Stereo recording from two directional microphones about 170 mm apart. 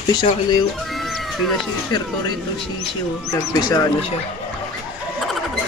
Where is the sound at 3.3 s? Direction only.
20° left (ahead or behind).